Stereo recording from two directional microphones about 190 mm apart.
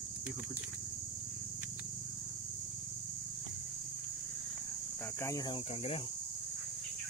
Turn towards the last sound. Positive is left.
turn(degrees=20)  # may be behind; listen again after turning